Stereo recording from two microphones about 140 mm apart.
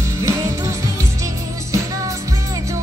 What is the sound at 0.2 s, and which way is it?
Music, 20° right (ahead or behind).